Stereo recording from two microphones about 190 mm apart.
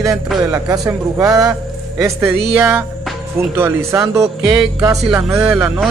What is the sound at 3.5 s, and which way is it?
Speech, 15° right (ahead or behind).